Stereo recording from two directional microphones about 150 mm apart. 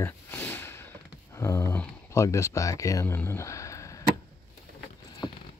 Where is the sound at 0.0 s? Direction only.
10° left (ahead or behind).